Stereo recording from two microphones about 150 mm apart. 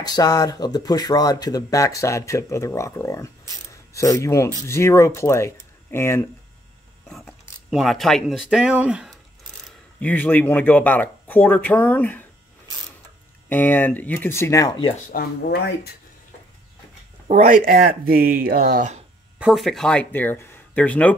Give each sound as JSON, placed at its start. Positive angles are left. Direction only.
{"t": 0.0, "sound": "speech", "side_deg": 25}
{"t": 7.1, "sound": "speech", "side_deg": 0}
{"t": 9.9, "sound": "speech", "side_deg": 10}
{"t": 13.5, "sound": "speech", "side_deg": 10}
{"t": 15.1, "sound": "speech", "side_deg": 90}
{"t": 17.3, "sound": "speech", "side_deg": -45}
{"t": 17.6, "sound": "speech", "side_deg": -85}
{"t": 18.3, "sound": "speech", "side_deg": -75}
{"t": 19.3, "sound": "speech", "side_deg": -5}